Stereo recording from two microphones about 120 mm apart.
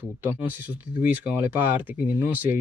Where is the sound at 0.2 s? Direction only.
15° right (ahead or behind).